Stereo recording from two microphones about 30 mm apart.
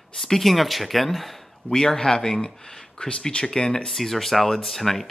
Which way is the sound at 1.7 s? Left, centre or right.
Left.